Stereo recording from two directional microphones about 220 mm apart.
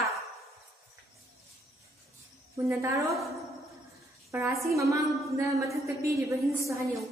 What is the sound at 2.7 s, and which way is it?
Speech, 15° right (ahead or behind).